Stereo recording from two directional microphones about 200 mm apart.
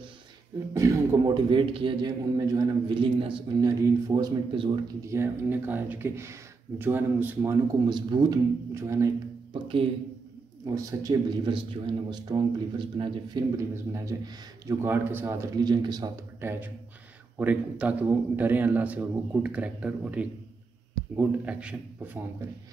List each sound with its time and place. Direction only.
0.7 s a man's voice: 20° right (ahead or behind)
9.5 s a man's voice: 25° right (ahead or behind); by 22.5 s 10° right (ahead or behind)